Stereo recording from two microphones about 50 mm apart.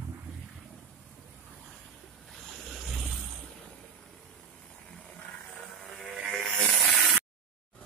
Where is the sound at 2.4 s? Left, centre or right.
Centre.